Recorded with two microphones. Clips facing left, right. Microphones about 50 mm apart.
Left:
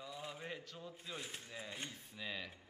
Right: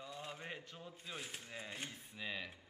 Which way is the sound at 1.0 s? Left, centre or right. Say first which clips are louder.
Right 1 dB; centre.